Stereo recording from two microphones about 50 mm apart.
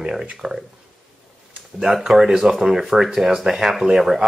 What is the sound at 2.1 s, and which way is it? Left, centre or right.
Speech, centre.